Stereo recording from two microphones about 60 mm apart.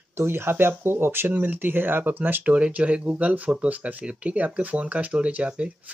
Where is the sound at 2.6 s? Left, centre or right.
Centre.